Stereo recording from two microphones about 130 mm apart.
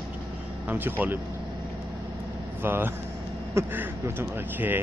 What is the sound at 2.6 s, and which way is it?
Speech, 15° right (ahead or behind).